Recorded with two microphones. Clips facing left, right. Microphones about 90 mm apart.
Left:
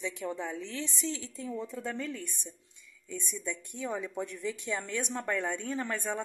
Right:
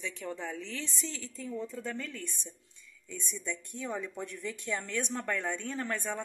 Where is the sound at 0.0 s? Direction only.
15° left (ahead or behind).